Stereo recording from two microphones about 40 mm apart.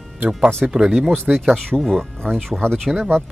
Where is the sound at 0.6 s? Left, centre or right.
Right.